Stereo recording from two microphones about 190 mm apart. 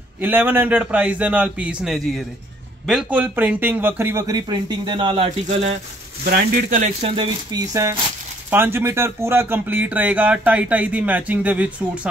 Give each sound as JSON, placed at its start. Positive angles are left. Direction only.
{"t": 0.2, "sound": "a man's voice", "side_deg": -10}
{"t": 6.2, "sound": "speech", "side_deg": -50}
{"t": 8.5, "sound": "speech", "side_deg": -10}